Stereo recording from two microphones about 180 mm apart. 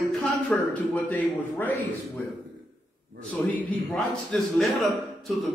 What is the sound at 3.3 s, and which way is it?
A man's voice, 10° left (ahead or behind).